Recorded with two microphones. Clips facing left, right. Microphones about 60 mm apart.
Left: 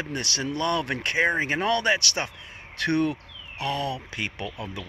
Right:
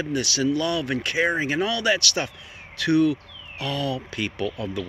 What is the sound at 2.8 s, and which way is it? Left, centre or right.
Speech, left.